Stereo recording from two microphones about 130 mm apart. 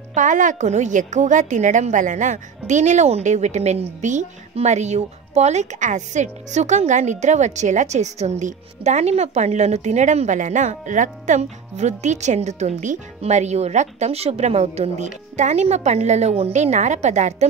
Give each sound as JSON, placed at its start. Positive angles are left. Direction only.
{"t": 0.1, "sound": "a woman's voice", "side_deg": -75}